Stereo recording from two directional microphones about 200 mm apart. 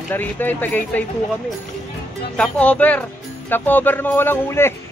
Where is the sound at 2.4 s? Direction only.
5° left (ahead or behind).